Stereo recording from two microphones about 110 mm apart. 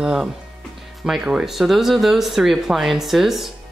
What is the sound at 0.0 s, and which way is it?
Speech, 5° right (ahead or behind).